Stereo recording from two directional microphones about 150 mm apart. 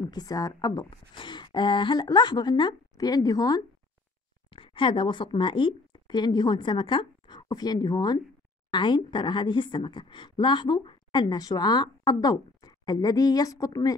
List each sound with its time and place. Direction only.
0.0 s a woman's voice: 25° left (ahead or behind)